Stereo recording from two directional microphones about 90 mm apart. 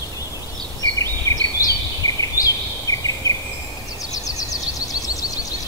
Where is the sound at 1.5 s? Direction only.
40° left (ahead or behind).